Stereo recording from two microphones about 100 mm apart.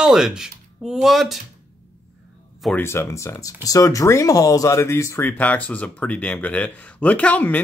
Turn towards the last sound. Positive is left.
turn(degrees=15)  # may be behind; listen again after turning